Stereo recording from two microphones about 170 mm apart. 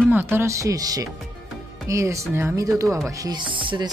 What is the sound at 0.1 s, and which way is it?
Speech, 10° right (ahead or behind).